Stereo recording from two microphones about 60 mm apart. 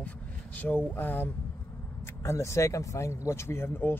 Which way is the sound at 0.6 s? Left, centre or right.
Left.